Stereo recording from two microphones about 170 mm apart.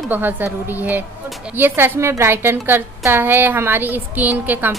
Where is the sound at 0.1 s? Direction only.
10° right (ahead or behind).